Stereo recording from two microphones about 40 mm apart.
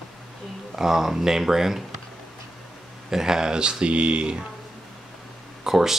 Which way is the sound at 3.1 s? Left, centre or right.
Centre.